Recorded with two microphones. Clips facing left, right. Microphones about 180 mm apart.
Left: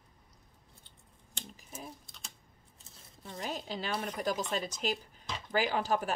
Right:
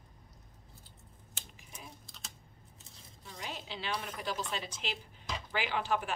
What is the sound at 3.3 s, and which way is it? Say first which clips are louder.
A woman's voice: left 5 dB; 40° left (ahead or behind).